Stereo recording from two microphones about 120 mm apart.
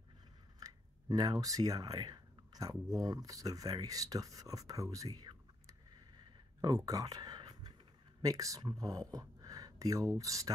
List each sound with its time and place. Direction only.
0.6 s speech: 30° right (ahead or behind)
6.9 s whispering: 30° right (ahead or behind)
8.2 s speech: 30° right (ahead or behind)